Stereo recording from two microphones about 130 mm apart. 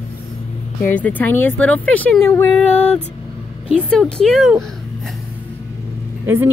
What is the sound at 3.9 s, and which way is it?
Speech, 5° left (ahead or behind).